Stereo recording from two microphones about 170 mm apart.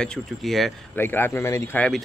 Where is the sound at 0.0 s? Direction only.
5° left (ahead or behind).